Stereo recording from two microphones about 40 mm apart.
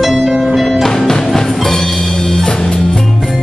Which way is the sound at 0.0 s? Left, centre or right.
Centre.